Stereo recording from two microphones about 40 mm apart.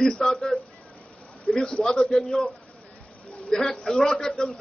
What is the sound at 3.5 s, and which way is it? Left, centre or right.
Speech, centre.